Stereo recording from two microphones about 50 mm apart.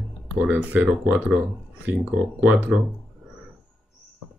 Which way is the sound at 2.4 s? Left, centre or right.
Right.